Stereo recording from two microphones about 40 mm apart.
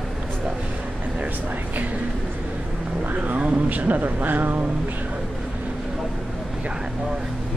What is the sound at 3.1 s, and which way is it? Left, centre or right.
Speech, right.